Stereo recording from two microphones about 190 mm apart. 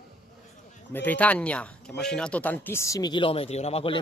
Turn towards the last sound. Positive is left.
turn(degrees=30)  # may be behind; listen again after turning